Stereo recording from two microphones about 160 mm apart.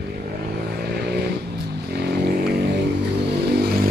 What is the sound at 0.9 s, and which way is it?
Vehicle, 90° right.